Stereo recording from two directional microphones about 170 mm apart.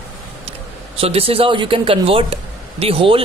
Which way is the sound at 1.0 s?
35° right (ahead or behind).